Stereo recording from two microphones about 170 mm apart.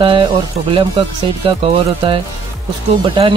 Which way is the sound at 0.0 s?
30° right (ahead or behind).